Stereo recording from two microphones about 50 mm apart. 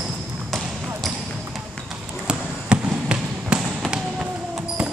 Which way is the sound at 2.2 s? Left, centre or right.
Centre.